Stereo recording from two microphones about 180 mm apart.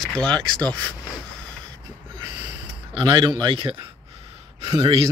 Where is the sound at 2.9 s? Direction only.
25° right (ahead or behind).